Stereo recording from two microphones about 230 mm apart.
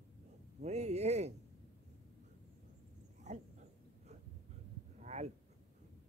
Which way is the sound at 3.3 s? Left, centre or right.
Right.